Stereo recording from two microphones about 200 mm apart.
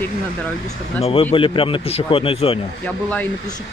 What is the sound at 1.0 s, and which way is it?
A man's voice, 30° left (ahead or behind).